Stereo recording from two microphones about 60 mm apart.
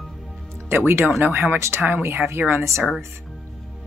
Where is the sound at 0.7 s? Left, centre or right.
Right.